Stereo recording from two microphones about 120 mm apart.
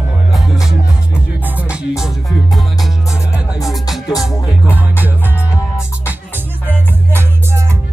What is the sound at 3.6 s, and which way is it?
Music, centre (ahead or behind).